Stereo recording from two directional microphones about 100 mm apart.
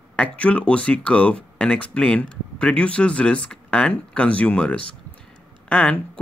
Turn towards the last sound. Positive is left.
turn(degrees=10)  # may be behind; listen again after turning